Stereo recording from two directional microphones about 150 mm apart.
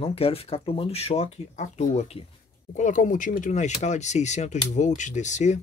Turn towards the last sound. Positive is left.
turn(degrees=50)  # may be behind; listen again after turning